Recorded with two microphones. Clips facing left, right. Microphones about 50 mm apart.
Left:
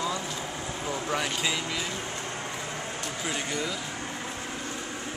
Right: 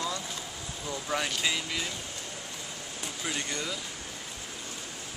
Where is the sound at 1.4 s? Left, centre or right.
Centre.